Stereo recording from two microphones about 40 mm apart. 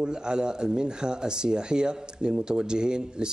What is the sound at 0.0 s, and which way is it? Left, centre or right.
Speech, centre.